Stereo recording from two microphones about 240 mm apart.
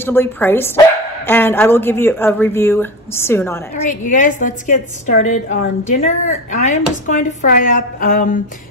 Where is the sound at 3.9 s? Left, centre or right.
Left.